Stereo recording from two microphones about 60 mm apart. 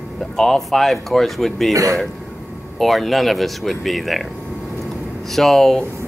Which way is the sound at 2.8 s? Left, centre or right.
Centre.